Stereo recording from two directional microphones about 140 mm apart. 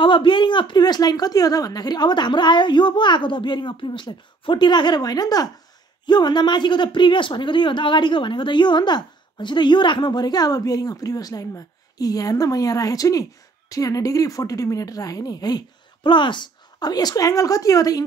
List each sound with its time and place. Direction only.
0.0 s a woman's voice: 35° left (ahead or behind)